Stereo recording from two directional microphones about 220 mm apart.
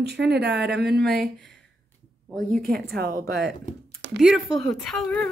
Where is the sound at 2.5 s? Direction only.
40° right (ahead or behind).